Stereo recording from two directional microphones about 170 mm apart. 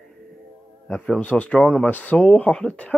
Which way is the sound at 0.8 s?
5° left (ahead or behind).